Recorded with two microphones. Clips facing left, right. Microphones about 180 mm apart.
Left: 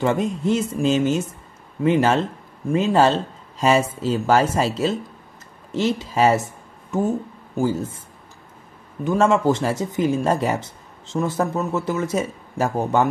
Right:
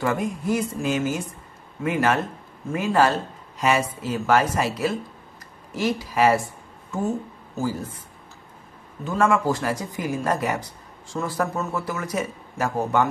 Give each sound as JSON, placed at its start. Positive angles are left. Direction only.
{"t": 0.0, "sound": "speech", "side_deg": 25}
{"t": 9.0, "sound": "speech", "side_deg": 20}